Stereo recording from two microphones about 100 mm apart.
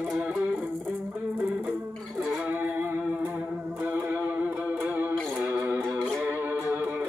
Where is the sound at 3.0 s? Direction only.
15° right (ahead or behind).